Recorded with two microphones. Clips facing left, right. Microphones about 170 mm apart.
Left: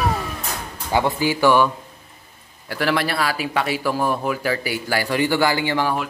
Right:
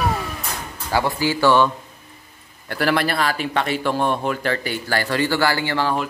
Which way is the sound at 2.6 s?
Centre (ahead or behind).